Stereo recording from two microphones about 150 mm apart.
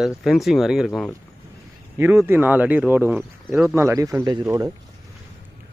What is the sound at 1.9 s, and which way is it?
A man's voice, 15° right (ahead or behind).